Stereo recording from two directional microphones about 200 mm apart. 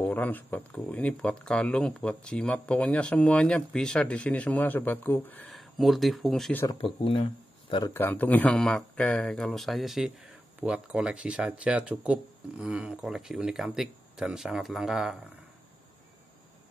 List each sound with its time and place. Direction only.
0.0 s speech: 10° left (ahead or behind)
6.8 s speech: 25° left (ahead or behind)
7.7 s speech: 15° left (ahead or behind); by 15.1 s centre (ahead or behind)